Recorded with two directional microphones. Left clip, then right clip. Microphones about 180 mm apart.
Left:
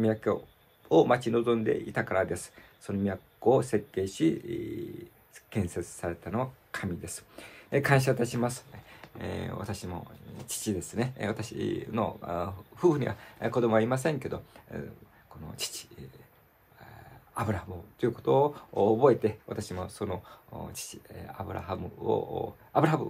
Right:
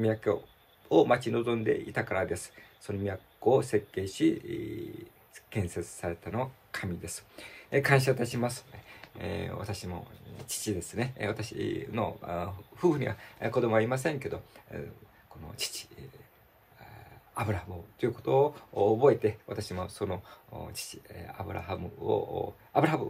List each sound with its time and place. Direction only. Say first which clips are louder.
0.0 s speech: left 1 dB; 15° left (ahead or behind)
17.3 s speech: left 1 dB; 10° left (ahead or behind)